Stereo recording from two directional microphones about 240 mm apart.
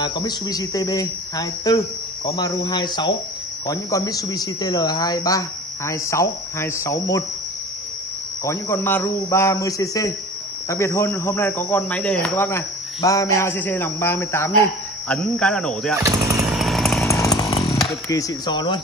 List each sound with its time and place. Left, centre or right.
0.0 s speech: centre
8.5 s speech: centre
16.4 s chainsaw: centre
17.1 s chainsaw: centre
17.8 s speech: centre